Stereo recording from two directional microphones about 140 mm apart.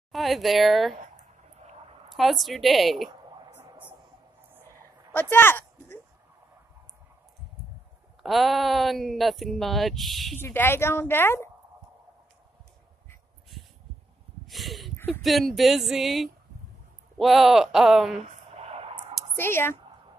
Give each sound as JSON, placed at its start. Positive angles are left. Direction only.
{"t": 0.1, "sound": "speech", "side_deg": 0}
{"t": 2.1, "sound": "speech", "side_deg": 0}
{"t": 5.3, "sound": "speech", "side_deg": 15}
{"t": 8.2, "sound": "speech", "side_deg": 0}
{"t": 10.4, "sound": "a woman's voice", "side_deg": 15}
{"t": 13.5, "sound": "a sound", "side_deg": 0}
{"t": 15.2, "sound": "speech", "side_deg": 0}
{"t": 18.2, "sound": "clicking", "side_deg": -50}
{"t": 19.3, "sound": "a woman's voice", "side_deg": 15}